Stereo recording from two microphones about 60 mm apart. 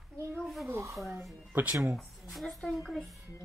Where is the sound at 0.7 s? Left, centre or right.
Right.